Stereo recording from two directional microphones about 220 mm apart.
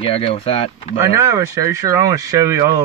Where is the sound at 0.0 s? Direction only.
25° left (ahead or behind).